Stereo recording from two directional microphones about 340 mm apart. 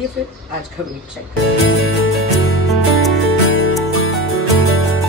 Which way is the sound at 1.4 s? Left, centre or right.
Left.